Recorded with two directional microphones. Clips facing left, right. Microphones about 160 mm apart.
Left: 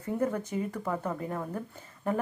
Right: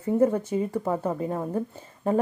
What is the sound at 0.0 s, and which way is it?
A woman's voice, 25° right (ahead or behind).